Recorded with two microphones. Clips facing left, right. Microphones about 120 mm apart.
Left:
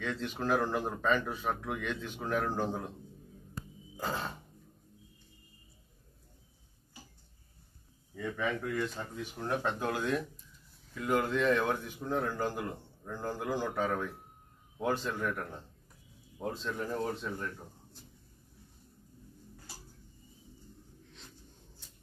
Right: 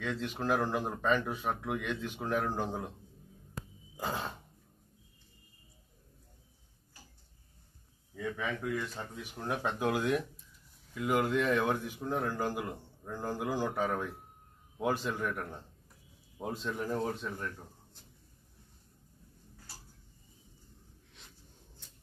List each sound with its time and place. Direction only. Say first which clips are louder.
0.0 s speech: even; 5° right (ahead or behind)
3.9 s a sound: even; 15° right (ahead or behind)
8.1 s a man's voice: left 2 dB; centre (ahead or behind)